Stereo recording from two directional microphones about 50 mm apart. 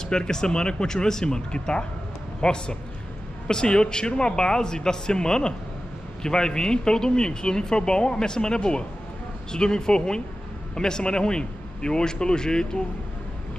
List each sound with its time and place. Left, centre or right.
0.0 s speech: centre